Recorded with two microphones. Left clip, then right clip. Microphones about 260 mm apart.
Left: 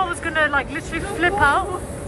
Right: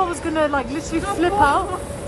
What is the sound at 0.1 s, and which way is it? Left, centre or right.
Speech, centre.